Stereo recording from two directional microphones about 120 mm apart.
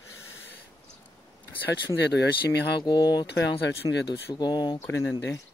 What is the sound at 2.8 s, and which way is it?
Speech, 40° left (ahead or behind).